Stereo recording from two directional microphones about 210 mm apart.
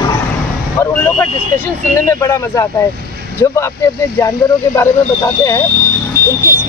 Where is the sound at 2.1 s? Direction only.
15° left (ahead or behind).